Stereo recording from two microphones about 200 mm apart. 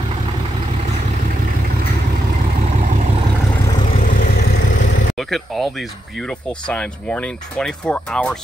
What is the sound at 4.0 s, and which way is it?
Vehicle, 45° left (ahead or behind).